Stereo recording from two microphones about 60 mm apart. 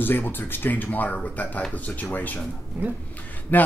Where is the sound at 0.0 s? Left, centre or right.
Left.